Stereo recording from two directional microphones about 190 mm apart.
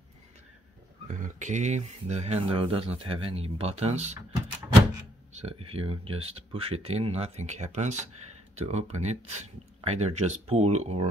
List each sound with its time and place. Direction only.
1.0 s speech: 40° right (ahead or behind)
5.4 s speech: 30° right (ahead or behind)